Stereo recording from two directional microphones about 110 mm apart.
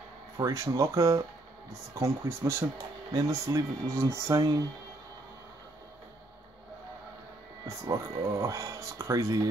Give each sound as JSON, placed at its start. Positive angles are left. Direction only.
{"t": 0.4, "sound": "speech", "side_deg": -30}
{"t": 3.1, "sound": "speech", "side_deg": -35}
{"t": 7.6, "sound": "speech", "side_deg": -30}